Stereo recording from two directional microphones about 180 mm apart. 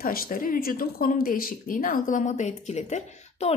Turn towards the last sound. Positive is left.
turn(degrees=40)  # may be behind; listen again after turning